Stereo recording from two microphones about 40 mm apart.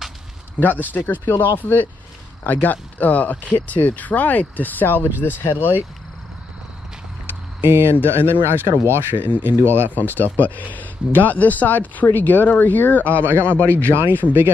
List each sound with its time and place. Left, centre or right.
0.6 s speech: left
1.2 s speech: left
7.6 s speech: right
8.1 s speech: right
9.9 s a man's voice: left
13.7 s speech: right